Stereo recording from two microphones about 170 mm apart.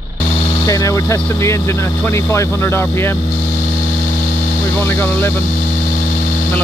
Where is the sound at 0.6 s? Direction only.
20° left (ahead or behind).